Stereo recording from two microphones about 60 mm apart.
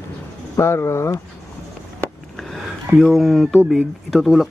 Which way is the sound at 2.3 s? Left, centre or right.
Centre.